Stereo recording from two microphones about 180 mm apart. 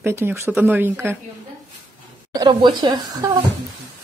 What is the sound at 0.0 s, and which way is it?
Speech, 15° right (ahead or behind).